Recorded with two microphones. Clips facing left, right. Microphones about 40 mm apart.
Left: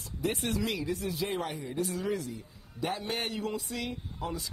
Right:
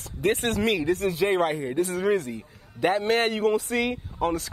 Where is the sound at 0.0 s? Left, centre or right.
Right.